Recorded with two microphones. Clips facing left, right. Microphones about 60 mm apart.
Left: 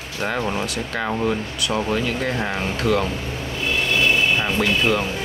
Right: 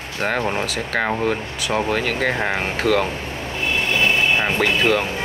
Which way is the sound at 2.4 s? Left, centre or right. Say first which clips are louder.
Right 3 dB; right.